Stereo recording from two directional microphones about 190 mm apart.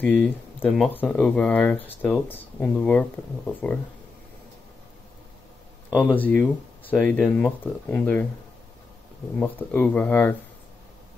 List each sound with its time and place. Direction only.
0.0 s speech: 10° left (ahead or behind)
5.9 s speech: 5° left (ahead or behind)
9.4 s speech: 10° left (ahead or behind)